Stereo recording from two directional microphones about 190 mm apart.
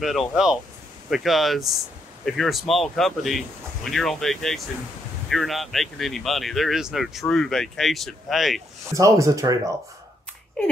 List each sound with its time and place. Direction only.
0.0 s speech: centre (ahead or behind)
8.9 s speech: 15° right (ahead or behind)